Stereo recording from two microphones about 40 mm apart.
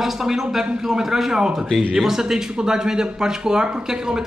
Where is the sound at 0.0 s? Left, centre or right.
Centre.